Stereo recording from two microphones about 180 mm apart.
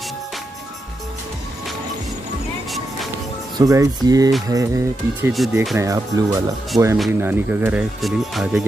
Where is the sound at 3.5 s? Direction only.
20° right (ahead or behind); by 8.6 s centre (ahead or behind).